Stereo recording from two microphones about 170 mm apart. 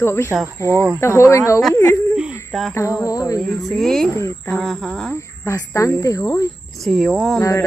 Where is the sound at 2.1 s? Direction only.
5° right (ahead or behind).